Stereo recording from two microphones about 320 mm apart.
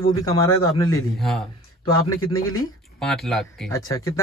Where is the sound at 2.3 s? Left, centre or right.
Left.